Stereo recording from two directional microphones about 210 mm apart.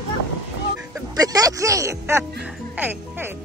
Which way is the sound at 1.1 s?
15° right (ahead or behind).